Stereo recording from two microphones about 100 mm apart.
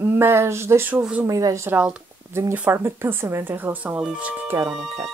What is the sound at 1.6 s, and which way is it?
Speech, 10° right (ahead or behind).